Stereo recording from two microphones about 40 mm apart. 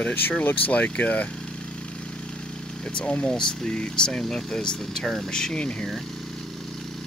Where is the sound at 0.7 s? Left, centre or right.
Left.